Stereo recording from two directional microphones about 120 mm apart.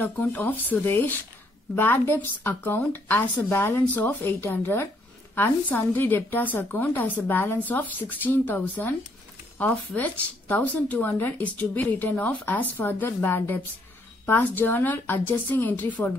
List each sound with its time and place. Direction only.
0.0 s speech: 15° left (ahead or behind)